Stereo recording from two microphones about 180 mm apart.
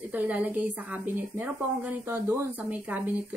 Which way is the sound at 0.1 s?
10° right (ahead or behind).